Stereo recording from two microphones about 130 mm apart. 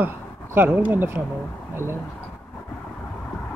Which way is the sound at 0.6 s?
15° right (ahead or behind).